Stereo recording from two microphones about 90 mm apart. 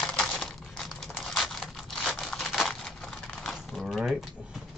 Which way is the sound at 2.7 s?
5° left (ahead or behind).